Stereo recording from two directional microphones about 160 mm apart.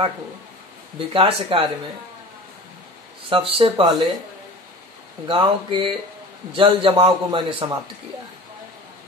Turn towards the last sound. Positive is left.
turn(degrees=-30)  # may be behind; listen again after turning